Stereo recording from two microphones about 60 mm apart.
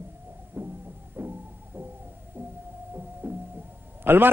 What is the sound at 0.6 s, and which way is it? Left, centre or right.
Heart sounds, right.